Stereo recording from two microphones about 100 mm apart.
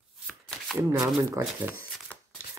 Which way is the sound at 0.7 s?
Centre (ahead or behind).